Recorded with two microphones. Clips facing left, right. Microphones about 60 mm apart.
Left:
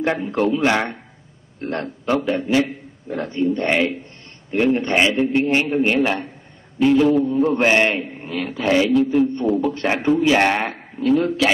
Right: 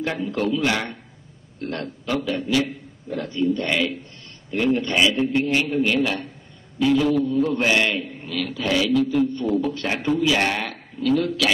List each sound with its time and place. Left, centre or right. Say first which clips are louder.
0.0 s a man's voice: left 4 dB; left